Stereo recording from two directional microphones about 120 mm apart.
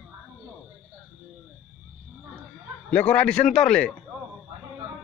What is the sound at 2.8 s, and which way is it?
A man's voice, 10° left (ahead or behind).